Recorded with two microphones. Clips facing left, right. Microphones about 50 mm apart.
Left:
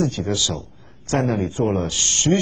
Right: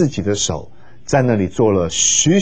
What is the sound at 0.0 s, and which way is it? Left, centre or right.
A man's voice, right.